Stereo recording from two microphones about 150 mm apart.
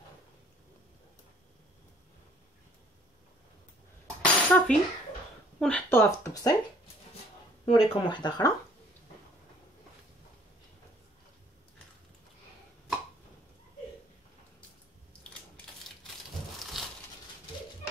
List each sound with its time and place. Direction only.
4.2 s a sound: 5° left (ahead or behind)
5.6 s speech: 10° left (ahead or behind)
7.6 s speech: 35° left (ahead or behind)
16.8 s crushing: centre (ahead or behind)